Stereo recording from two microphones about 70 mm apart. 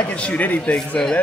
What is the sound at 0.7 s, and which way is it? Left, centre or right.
Speech, centre.